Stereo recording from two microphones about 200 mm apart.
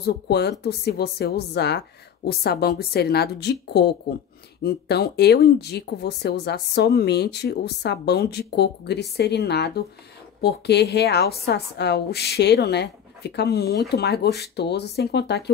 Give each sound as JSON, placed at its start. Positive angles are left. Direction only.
{"t": 0.0, "sound": "speech", "side_deg": 55}